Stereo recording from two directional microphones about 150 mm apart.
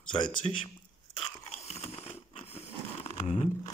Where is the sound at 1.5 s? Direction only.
45° left (ahead or behind).